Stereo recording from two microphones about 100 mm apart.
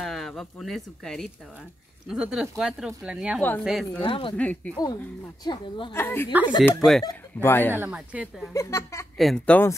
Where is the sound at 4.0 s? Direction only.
60° left (ahead or behind).